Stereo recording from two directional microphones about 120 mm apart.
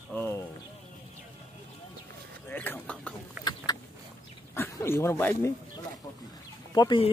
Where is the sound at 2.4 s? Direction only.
15° left (ahead or behind).